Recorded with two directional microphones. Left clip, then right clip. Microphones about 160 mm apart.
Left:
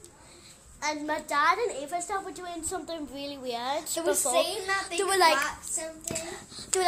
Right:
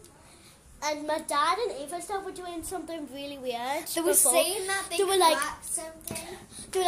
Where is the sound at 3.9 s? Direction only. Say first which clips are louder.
Right 2 dB; 40° right (ahead or behind).